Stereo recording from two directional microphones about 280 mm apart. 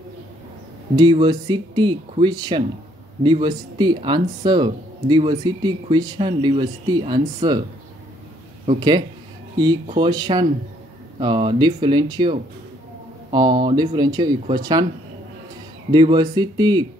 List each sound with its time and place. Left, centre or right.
0.9 s speech: centre
8.6 s speech: centre
15.9 s speech: centre